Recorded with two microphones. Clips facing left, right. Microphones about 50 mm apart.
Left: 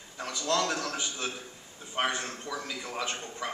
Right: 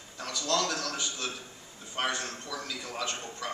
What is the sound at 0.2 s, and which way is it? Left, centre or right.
A man's voice, centre.